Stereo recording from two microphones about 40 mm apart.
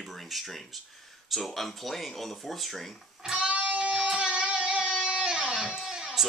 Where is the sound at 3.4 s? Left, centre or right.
Right.